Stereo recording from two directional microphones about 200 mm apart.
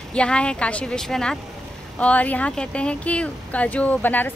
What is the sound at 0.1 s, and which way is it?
A woman's voice, 5° left (ahead or behind).